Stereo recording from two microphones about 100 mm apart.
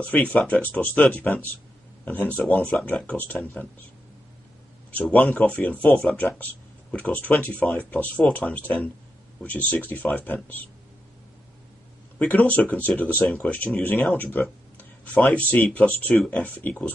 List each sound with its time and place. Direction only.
0.0 s speech: 15° left (ahead or behind)
4.9 s speech: 10° left (ahead or behind)
12.2 s speech: 15° left (ahead or behind)